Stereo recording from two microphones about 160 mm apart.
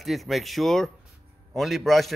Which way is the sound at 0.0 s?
Centre (ahead or behind).